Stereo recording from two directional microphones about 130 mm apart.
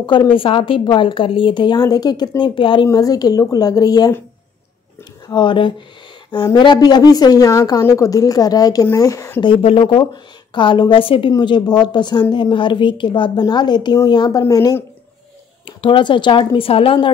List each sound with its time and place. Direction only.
0.0 s a woman's voice: 40° left (ahead or behind)
2.9 s a woman's voice: 30° left (ahead or behind)
5.3 s a woman's voice: 40° left (ahead or behind)
9.4 s a woman's voice: 45° left (ahead or behind); by 14.8 s 30° left (ahead or behind)
15.6 s a woman's voice: 40° left (ahead or behind)